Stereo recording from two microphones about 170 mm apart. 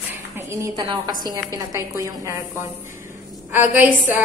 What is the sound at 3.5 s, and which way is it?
Speech, 10° right (ahead or behind).